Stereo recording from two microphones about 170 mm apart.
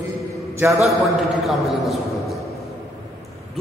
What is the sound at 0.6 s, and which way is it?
Speech, 10° right (ahead or behind).